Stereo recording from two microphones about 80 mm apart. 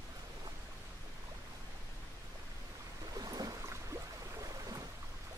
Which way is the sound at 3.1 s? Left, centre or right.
Right.